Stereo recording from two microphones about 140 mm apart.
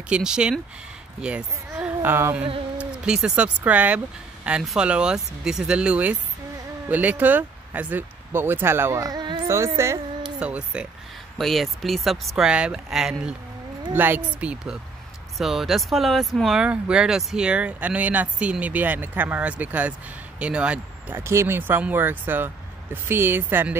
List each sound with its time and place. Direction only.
0.1 s speech: 5° right (ahead or behind)
2.0 s humming: 20° right (ahead or behind)
3.1 s speech: 5° right (ahead or behind); by 9.4 s 30° right (ahead or behind)
9.8 s speech: 20° right (ahead or behind)
10.4 s speech: 5° right (ahead or behind)